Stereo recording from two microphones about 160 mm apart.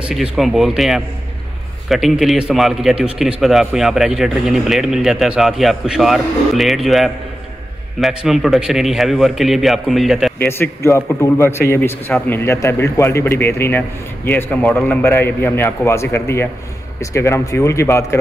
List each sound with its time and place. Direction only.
0.1 s a man's voice: centre (ahead or behind)
10.4 s a man's voice: 15° left (ahead or behind)